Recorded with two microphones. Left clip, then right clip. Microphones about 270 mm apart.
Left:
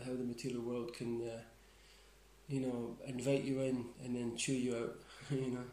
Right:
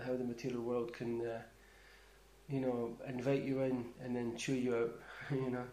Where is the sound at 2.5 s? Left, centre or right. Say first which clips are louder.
Right 3 dB; centre.